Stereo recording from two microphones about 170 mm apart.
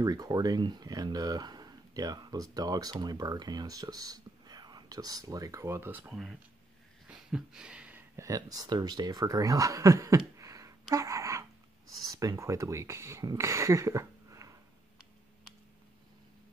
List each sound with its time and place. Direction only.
0.0 s speech: 20° right (ahead or behind)
7.1 s a sound: 5° right (ahead or behind)
8.3 s speech: 20° right (ahead or behind)